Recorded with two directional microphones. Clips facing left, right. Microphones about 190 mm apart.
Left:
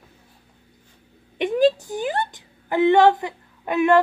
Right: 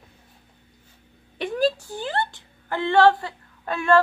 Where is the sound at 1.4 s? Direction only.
20° left (ahead or behind).